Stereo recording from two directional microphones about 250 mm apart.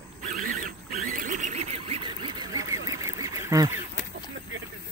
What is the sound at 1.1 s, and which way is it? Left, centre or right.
Quack, right.